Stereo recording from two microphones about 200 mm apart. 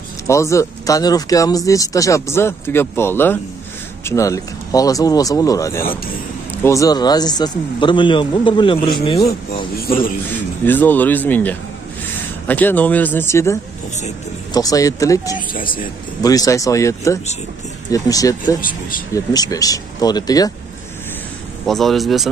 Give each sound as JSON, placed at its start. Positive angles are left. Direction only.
{"t": 0.3, "sound": "a man's voice", "side_deg": 15}
{"t": 9.8, "sound": "speech", "side_deg": 45}
{"t": 10.3, "sound": "speech", "side_deg": 10}
{"t": 18.6, "sound": "speech", "side_deg": 45}
{"t": 19.1, "sound": "a man's voice", "side_deg": 20}
{"t": 21.6, "sound": "speech", "side_deg": 0}